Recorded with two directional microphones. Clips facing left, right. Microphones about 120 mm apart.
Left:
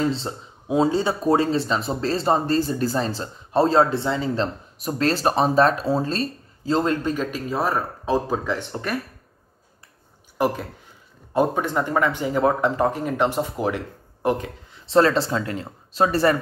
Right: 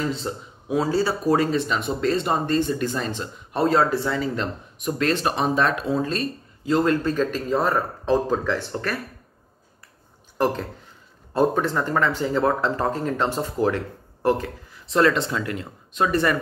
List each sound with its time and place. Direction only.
0.1 s speech: 30° left (ahead or behind)
10.3 s speech: 10° left (ahead or behind)
14.9 s speech: 30° left (ahead or behind)